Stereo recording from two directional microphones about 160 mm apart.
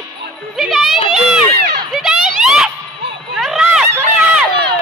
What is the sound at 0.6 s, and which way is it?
Music, centre (ahead or behind).